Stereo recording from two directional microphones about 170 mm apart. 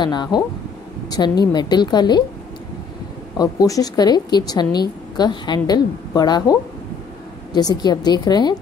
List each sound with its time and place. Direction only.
0.0 s a woman's voice: 25° left (ahead or behind)
3.3 s a woman's voice: 20° left (ahead or behind)